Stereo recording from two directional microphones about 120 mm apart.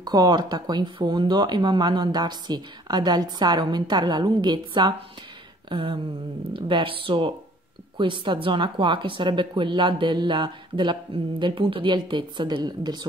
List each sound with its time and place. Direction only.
0.0 s speech: 35° right (ahead or behind)